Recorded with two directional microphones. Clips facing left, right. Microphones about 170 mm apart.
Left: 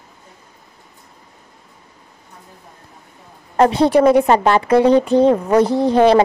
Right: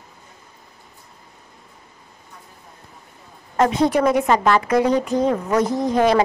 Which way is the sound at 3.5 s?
30° left (ahead or behind).